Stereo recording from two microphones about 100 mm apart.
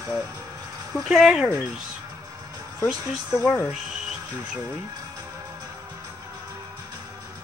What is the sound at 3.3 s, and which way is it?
Speech, 20° left (ahead or behind).